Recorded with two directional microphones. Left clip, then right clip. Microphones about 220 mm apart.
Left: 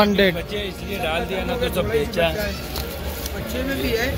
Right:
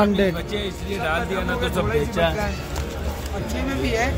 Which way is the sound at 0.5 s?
50° right (ahead or behind).